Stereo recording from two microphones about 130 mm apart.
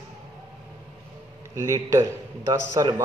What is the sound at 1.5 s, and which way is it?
Speech, 25° right (ahead or behind).